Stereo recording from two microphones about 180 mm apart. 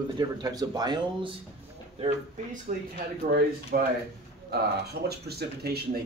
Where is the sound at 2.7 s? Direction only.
40° right (ahead or behind).